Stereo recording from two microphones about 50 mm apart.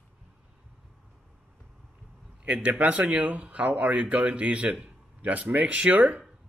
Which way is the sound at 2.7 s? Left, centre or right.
Right.